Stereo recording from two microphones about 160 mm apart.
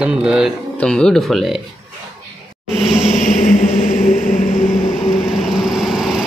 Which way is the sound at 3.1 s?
50° left (ahead or behind).